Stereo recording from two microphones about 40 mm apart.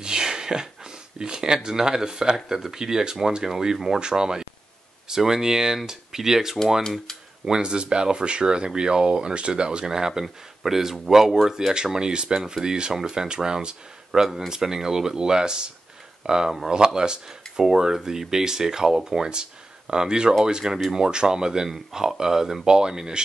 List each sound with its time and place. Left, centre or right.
0.0 s a sound: centre
2.5 s speech: centre
7.4 s speech: right
11.7 s speech: centre